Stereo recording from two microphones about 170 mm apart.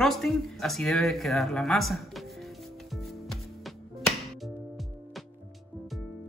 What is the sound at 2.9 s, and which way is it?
Music, centre (ahead or behind).